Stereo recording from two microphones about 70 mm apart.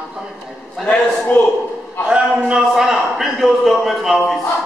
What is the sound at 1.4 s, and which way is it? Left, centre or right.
Speech, left.